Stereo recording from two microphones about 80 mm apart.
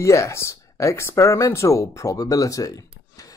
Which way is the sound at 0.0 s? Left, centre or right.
Left.